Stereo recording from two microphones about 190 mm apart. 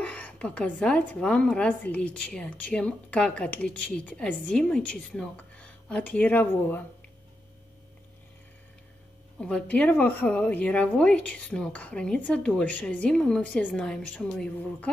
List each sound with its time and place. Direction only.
0.0 s a woman's voice: 5° left (ahead or behind)
9.4 s a woman's voice: 5° left (ahead or behind)